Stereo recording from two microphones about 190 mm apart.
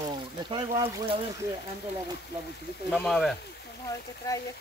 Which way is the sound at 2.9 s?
Centre (ahead or behind).